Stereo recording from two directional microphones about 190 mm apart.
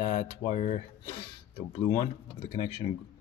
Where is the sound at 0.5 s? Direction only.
40° left (ahead or behind).